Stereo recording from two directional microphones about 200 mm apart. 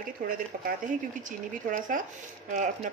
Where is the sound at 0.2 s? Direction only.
40° right (ahead or behind).